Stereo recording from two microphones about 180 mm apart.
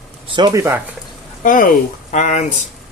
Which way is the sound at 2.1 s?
45° left (ahead or behind).